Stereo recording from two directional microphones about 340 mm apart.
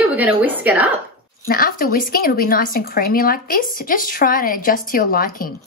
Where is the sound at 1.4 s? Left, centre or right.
Left.